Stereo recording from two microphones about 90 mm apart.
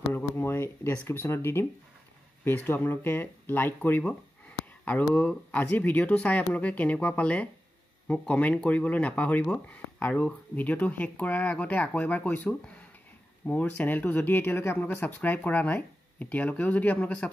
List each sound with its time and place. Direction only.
0.1 s speech: 25° left (ahead or behind)